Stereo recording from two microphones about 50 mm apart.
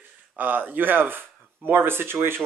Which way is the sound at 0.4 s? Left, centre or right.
Right.